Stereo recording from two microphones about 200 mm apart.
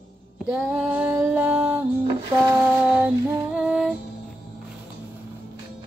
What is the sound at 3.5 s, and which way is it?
Female singing, 5° right (ahead or behind).